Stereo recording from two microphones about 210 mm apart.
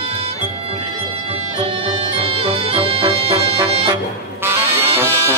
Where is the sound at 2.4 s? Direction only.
25° right (ahead or behind).